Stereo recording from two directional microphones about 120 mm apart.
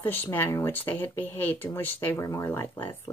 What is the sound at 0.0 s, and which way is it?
Speech, 15° left (ahead or behind).